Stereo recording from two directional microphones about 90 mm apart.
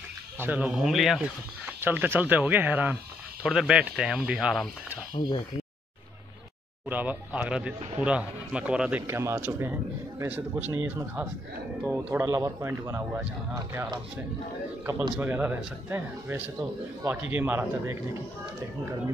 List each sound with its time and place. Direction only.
0.4 s speech: 15° right (ahead or behind)
0.7 s speech: 5° right (ahead or behind)
1.8 s a man's voice: 25° right (ahead or behind)
3.4 s speech: 5° right (ahead or behind)
5.1 s speech: 60° left (ahead or behind)
6.9 s speech: 15° right (ahead or behind)
9.0 s a man's voice: 30° right (ahead or behind)
10.7 s a man's voice: 40° right (ahead or behind)
11.8 s a man's voice: 15° right (ahead or behind)
12.3 s a man's voice: 35° right (ahead or behind)
15.1 s a man's voice: 20° right (ahead or behind)
17.1 s a man's voice: 20° right (ahead or behind)